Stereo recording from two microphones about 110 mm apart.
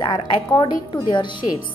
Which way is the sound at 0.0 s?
40° left (ahead or behind).